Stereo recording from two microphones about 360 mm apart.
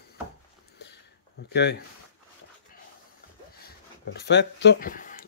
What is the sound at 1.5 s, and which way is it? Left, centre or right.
Speech, left.